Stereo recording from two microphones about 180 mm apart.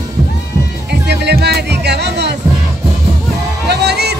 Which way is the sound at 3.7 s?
65° right (ahead or behind).